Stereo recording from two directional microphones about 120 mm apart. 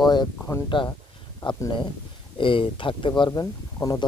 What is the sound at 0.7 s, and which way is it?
Speech, 45° left (ahead or behind).